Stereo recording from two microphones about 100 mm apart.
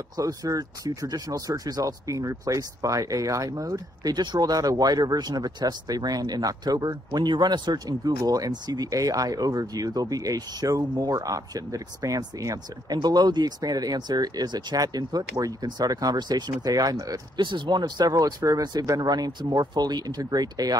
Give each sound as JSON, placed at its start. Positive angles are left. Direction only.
{"t": 0.2, "sound": "speech", "side_deg": -35}
{"t": 17.4, "sound": "speech", "side_deg": -50}